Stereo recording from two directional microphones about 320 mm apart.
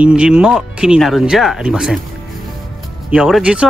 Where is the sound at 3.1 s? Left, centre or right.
Centre.